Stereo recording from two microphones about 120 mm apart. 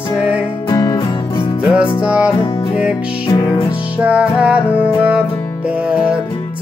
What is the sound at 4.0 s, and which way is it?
Music, 10° right (ahead or behind).